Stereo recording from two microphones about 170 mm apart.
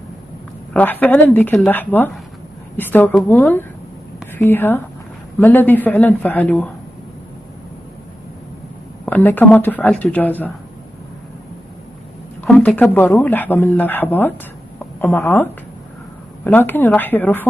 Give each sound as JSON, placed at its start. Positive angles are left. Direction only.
{"t": 0.7, "sound": "speech", "side_deg": 10}
{"t": 9.0, "sound": "speech", "side_deg": 10}
{"t": 12.4, "sound": "a woman's voice", "side_deg": 5}